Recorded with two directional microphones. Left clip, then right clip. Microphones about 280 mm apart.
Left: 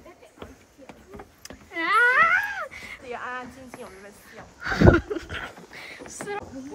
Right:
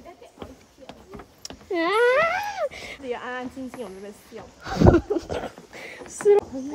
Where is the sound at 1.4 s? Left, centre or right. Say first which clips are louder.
Right 4 dB; centre; by 3.4 s right.